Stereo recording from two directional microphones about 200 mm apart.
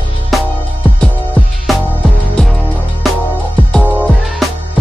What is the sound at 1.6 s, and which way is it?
Music, centre (ahead or behind).